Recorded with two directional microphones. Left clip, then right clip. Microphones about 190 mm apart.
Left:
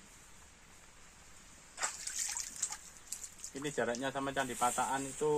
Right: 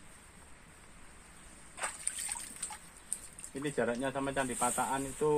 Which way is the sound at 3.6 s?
5° left (ahead or behind).